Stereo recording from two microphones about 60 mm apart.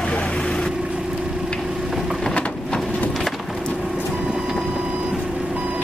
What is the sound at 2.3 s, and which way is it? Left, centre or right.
Vehicle, centre.